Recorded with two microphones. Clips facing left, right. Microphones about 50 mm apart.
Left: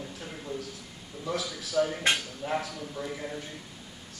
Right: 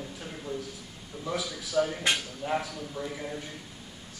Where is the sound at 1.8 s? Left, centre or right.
Centre.